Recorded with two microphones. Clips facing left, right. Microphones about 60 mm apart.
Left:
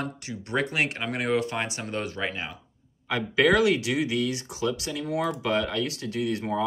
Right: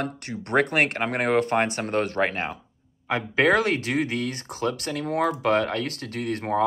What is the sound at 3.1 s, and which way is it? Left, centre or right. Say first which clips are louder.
Speech: right 1 dB; right.